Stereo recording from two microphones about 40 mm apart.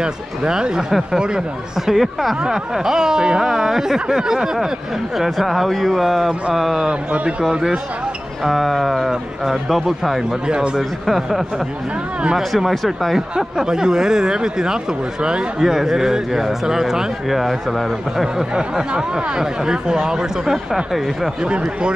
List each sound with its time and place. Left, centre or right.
0.0 s speech: centre
1.9 s speech: centre
2.4 s speech: centre
6.9 s speech: right
8.5 s speech: centre
10.4 s speech: right
10.8 s speech: centre
13.7 s speech: centre
15.6 s speech: centre
18.5 s speech: right
20.5 s speech: centre
21.4 s speech: right